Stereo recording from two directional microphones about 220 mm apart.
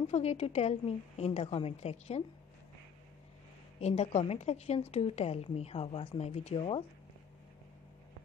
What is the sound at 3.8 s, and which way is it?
A woman's voice, 30° left (ahead or behind).